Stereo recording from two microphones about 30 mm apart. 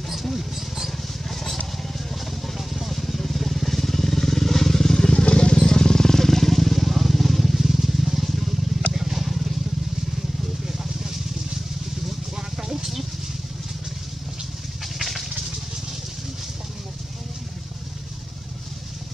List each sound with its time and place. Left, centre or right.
0.1 s vehicle: centre
1.3 s vehicle: centre
5.1 s vehicle: left; by 9.5 s centre
10.7 s vehicle: centre
12.4 s a sound: right
15.0 s a sound: centre